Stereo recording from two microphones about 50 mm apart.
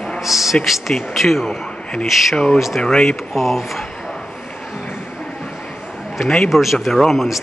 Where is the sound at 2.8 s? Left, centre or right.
Centre.